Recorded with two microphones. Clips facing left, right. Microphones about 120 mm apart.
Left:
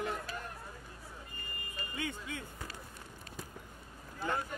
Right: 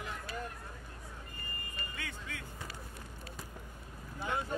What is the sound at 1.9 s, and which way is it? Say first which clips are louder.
Speech: left 8 dB; 20° left (ahead or behind).